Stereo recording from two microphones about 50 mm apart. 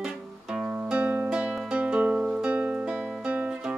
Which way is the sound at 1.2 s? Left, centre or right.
Centre.